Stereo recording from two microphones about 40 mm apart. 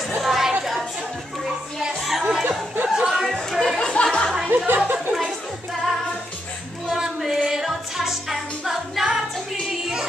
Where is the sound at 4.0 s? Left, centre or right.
Left.